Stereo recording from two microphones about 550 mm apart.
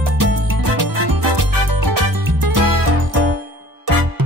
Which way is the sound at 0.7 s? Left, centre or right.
Right.